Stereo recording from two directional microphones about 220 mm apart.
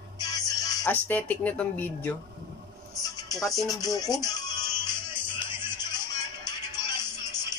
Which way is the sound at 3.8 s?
15° left (ahead or behind).